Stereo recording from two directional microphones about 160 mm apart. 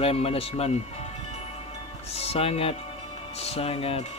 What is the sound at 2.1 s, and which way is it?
Speech, 40° left (ahead or behind).